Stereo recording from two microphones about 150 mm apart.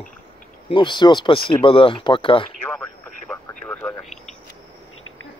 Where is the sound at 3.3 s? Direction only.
10° left (ahead or behind).